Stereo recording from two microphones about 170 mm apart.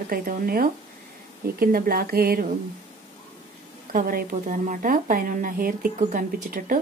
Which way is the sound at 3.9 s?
50° right (ahead or behind).